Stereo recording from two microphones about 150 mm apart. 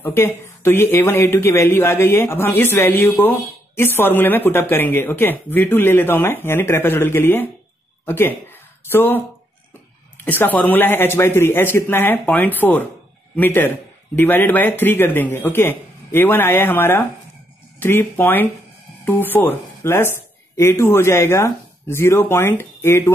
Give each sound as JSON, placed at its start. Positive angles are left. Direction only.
{"t": 0.0, "sound": "speech", "side_deg": 15}
{"t": 10.2, "sound": "speech", "side_deg": 15}